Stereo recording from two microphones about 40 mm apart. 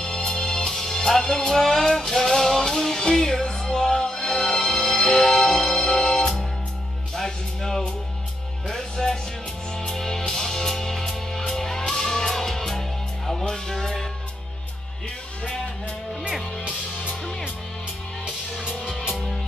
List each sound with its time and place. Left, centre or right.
0.0 s music: centre